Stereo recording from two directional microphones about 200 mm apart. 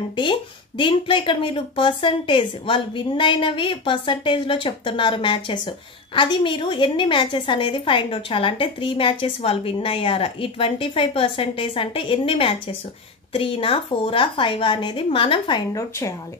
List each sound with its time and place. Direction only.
0.1 s a woman's voice: 25° left (ahead or behind)